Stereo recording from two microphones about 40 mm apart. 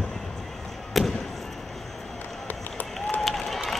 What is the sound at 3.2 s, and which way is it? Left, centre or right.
Applause, centre.